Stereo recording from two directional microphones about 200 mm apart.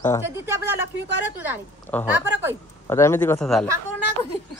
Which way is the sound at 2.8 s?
10° left (ahead or behind).